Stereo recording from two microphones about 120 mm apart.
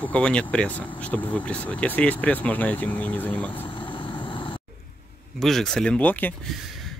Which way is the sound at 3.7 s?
45° left (ahead or behind).